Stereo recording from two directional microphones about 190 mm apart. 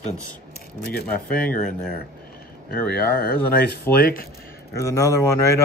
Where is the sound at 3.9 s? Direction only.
15° left (ahead or behind).